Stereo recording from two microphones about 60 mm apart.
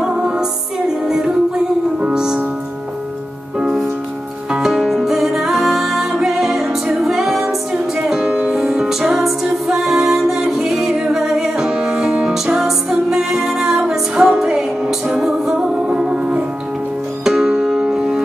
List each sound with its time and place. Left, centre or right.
0.0 s music: centre
3.5 s music: centre
8.3 s music: right
8.5 s music: centre